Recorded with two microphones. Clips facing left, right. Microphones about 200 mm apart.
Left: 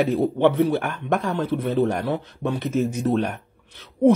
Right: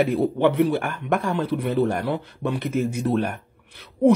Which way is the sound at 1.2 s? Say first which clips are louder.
Even; 10° right (ahead or behind).